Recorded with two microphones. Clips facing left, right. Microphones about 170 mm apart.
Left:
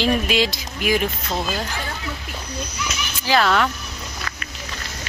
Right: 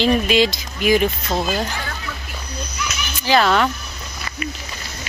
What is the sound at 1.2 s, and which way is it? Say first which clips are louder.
Speech: right 3 dB; 15° right (ahead or behind).